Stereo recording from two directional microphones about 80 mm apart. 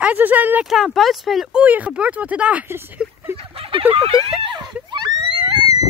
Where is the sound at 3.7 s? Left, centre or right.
Right.